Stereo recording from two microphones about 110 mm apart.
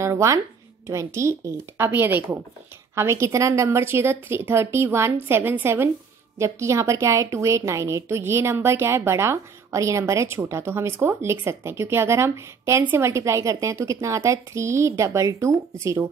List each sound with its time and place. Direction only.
0.0 s a woman's voice: 25° right (ahead or behind)